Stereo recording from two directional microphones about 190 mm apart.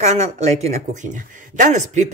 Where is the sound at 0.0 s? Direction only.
35° right (ahead or behind).